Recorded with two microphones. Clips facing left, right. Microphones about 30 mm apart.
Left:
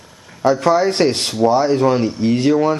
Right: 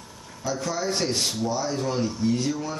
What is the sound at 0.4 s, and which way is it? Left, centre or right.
Speech, left.